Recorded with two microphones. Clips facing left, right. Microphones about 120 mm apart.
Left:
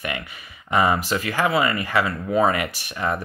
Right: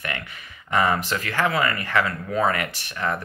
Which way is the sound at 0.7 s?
15° left (ahead or behind).